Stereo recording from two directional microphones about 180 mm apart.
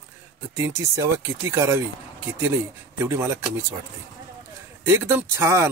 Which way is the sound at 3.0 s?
15° right (ahead or behind).